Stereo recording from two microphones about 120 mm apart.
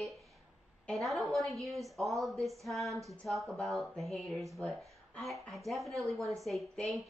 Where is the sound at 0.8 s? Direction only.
Centre (ahead or behind).